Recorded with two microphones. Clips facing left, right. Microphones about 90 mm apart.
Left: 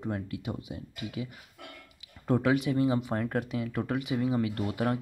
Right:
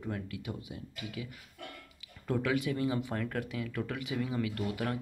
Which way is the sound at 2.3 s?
25° left (ahead or behind).